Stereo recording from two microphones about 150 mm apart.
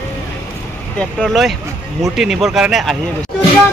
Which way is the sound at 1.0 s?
5° left (ahead or behind).